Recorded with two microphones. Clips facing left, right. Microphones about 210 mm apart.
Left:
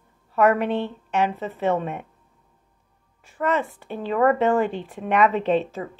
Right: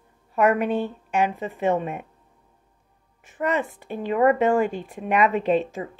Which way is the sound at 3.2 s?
15° right (ahead or behind).